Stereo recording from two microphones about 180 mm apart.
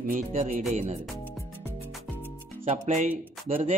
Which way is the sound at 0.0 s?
45° right (ahead or behind).